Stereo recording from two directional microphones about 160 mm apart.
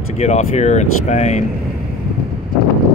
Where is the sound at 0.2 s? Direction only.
45° left (ahead or behind).